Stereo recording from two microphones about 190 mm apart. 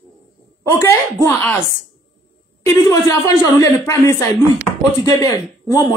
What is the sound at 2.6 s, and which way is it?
A woman's voice, 15° left (ahead or behind).